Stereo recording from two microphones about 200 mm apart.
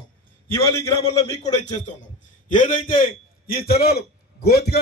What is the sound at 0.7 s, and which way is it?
Speech, 15° left (ahead or behind).